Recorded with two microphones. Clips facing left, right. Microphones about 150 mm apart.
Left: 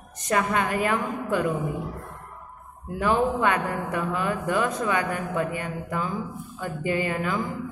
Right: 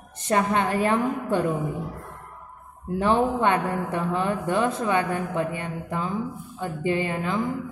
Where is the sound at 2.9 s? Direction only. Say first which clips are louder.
Right 1 dB; 30° right (ahead or behind).